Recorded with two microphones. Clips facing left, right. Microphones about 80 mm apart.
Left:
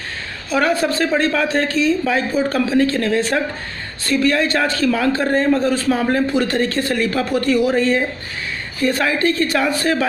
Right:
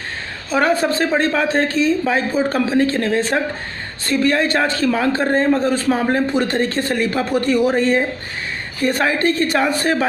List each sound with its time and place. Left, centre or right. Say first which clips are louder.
0.5 s a man's voice: right 1 dB; right